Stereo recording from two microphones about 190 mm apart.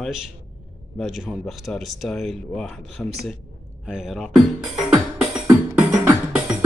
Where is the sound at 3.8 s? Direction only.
5° right (ahead or behind).